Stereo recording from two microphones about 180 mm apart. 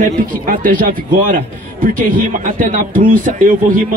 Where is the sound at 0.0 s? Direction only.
50° right (ahead or behind).